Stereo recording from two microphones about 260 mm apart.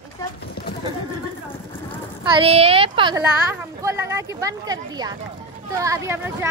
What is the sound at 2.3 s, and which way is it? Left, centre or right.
A woman's voice, right.